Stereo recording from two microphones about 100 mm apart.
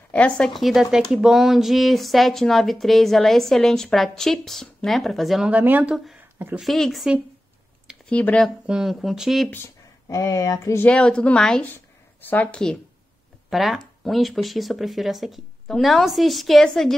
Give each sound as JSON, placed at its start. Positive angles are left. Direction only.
{"t": 0.1, "sound": "speech", "side_deg": 10}
{"t": 5.5, "sound": "speech", "side_deg": -15}
{"t": 6.6, "sound": "speech", "side_deg": 0}
{"t": 8.1, "sound": "a woman's voice", "side_deg": 15}
{"t": 8.6, "sound": "speech", "side_deg": -5}
{"t": 9.5, "sound": "speech", "side_deg": 30}
{"t": 10.8, "sound": "a woman's voice", "side_deg": 10}
{"t": 11.6, "sound": "speech", "side_deg": 20}
{"t": 13.5, "sound": "speech", "side_deg": 0}